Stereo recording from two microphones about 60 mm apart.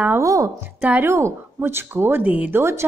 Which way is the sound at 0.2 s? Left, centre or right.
Right.